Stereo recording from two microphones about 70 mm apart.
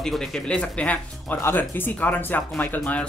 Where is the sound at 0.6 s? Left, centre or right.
Centre.